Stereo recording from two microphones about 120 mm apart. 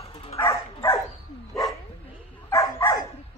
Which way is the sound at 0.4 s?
25° left (ahead or behind).